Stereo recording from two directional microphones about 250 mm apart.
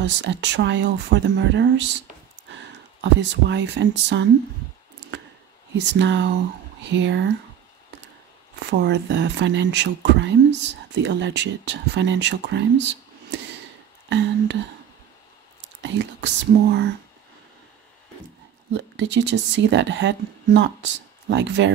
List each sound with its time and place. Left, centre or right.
0.0 s speech: right
5.9 s speech: right
8.6 s speech: right
15.8 s speech: right
18.7 s speech: right